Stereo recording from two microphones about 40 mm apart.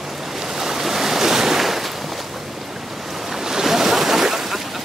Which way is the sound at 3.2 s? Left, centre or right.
Centre.